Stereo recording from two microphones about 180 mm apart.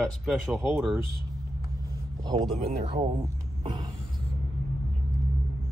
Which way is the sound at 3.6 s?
25° right (ahead or behind).